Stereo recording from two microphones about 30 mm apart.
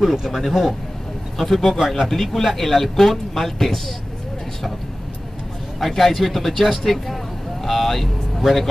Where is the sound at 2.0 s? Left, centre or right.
Centre.